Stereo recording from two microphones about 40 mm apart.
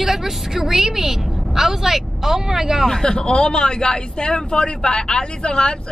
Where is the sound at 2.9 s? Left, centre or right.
Centre.